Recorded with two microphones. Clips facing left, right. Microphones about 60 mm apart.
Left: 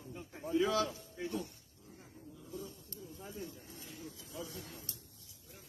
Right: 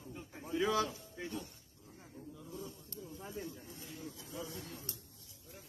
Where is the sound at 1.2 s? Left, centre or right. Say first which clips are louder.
Left 3 dB; centre.